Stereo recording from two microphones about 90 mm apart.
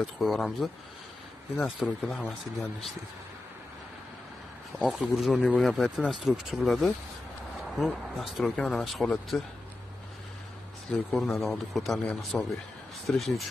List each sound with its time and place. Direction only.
0.0 s a man's voice: centre (ahead or behind)
4.7 s a man's voice: centre (ahead or behind)
11.1 s a man's voice: centre (ahead or behind)